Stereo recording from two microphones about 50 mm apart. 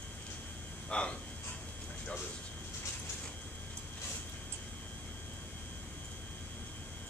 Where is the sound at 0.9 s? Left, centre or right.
Left.